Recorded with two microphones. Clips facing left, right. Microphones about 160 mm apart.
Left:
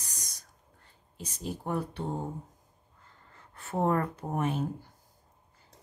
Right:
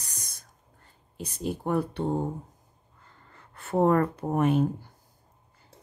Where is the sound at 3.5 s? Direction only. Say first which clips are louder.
Right 6 dB; 65° right (ahead or behind).